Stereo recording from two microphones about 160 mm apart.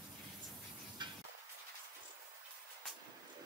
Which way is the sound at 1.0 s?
30° right (ahead or behind).